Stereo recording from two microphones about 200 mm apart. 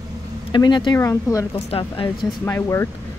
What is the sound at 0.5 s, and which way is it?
Speech, 25° left (ahead or behind).